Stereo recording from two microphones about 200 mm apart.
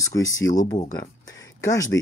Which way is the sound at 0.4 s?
20° left (ahead or behind).